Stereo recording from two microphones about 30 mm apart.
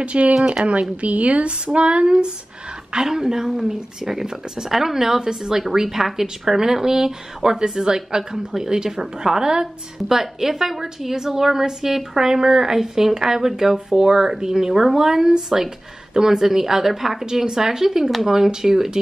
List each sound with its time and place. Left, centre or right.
0.0 s a woman's voice: right; by 18.9 s centre